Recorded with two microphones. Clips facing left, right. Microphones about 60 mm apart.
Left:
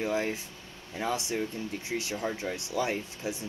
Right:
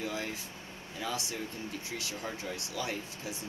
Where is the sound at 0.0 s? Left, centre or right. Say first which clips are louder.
Left 7 dB; left.